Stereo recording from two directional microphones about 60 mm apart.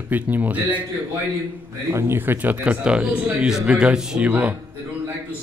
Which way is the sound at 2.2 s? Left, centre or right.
Right.